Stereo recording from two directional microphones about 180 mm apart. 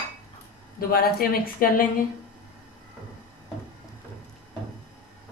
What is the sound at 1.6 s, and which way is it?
Speech, 50° left (ahead or behind).